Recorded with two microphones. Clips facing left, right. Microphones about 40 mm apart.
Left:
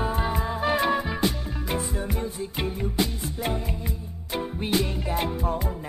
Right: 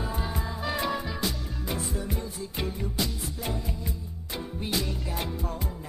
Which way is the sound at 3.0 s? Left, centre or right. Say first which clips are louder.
Left 5 dB; left.